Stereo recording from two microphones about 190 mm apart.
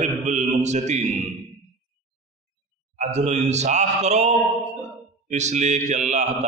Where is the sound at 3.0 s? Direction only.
35° right (ahead or behind).